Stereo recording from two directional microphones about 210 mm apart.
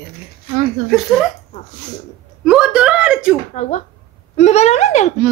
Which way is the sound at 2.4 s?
5° right (ahead or behind).